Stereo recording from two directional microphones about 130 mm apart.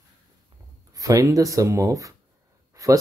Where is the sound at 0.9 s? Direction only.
25° right (ahead or behind).